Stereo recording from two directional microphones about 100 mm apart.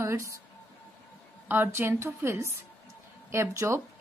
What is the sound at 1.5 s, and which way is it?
Speech, 20° right (ahead or behind).